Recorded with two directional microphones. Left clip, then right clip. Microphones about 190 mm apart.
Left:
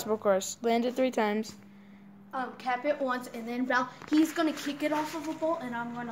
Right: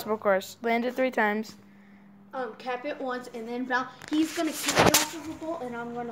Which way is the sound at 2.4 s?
35° left (ahead or behind).